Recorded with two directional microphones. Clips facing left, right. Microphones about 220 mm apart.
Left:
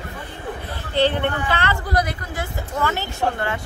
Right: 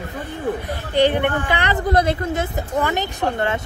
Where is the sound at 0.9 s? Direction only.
15° right (ahead or behind).